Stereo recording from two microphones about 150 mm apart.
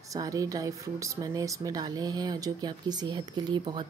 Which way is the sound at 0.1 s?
20° right (ahead or behind).